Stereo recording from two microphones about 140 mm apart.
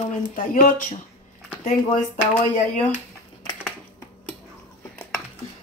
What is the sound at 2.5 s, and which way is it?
Speech, 55° left (ahead or behind).